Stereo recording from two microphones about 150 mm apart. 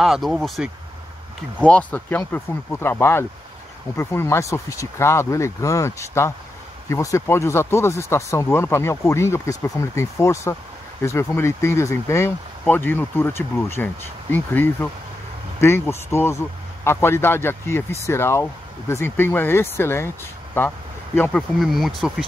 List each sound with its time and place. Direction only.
0.0 s speech: centre (ahead or behind)